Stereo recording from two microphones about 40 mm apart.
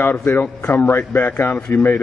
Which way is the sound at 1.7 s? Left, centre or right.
Left.